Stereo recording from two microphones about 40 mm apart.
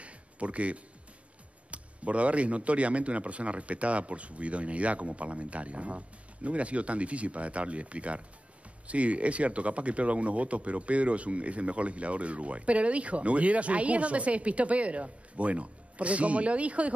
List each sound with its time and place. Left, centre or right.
0.0 s music: right
1.7 s speech: right